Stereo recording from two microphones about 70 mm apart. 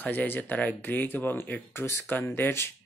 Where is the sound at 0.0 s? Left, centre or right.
Left.